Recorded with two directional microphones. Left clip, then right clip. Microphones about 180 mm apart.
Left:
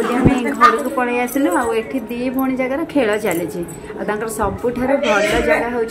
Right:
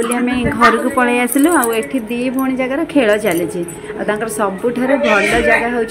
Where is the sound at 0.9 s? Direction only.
25° right (ahead or behind).